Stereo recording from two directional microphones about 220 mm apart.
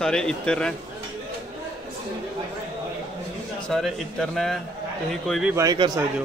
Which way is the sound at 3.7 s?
Centre (ahead or behind).